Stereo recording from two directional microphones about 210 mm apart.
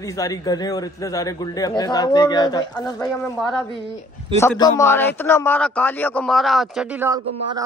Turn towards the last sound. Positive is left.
turn(degrees=-15)  # may be behind; listen again after turning